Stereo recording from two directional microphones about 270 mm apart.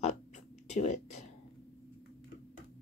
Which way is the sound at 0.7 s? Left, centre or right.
Left.